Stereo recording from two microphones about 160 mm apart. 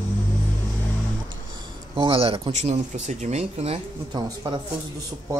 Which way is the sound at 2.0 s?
35° right (ahead or behind).